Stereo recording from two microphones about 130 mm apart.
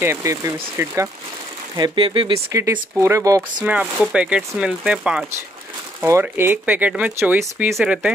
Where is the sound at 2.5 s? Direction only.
25° right (ahead or behind).